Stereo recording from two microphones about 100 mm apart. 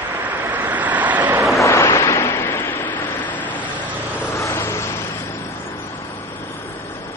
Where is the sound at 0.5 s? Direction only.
15° right (ahead or behind).